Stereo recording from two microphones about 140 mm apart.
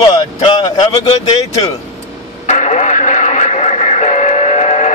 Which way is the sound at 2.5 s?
55° left (ahead or behind).